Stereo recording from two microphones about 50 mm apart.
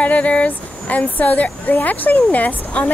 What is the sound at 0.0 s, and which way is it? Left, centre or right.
Speech, left.